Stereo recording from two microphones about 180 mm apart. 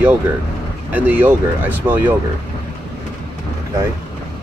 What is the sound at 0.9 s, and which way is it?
Speech, 10° right (ahead or behind).